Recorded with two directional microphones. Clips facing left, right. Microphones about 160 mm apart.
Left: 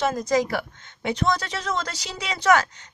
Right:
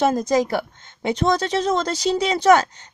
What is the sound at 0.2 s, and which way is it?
Speech, 25° right (ahead or behind).